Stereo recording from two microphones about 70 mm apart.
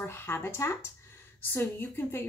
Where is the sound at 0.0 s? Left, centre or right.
Left.